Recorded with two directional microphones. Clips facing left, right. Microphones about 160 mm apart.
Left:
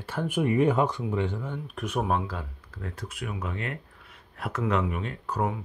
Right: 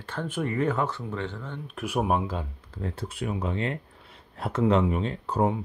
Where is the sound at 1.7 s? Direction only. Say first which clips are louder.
Right 2 dB; 10° right (ahead or behind).